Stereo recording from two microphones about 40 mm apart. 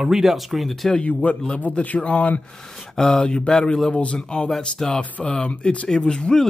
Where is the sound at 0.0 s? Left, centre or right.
Centre.